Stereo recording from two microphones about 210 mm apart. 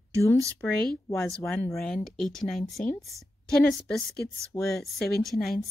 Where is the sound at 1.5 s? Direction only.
5° left (ahead or behind).